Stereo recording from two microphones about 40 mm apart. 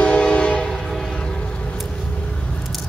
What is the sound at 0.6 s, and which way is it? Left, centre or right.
Train, centre.